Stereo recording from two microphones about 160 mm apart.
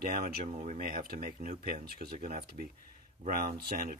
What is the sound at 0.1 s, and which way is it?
Speech, 60° right (ahead or behind).